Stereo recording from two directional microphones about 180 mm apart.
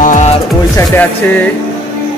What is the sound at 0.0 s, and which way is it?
Music, 45° left (ahead or behind).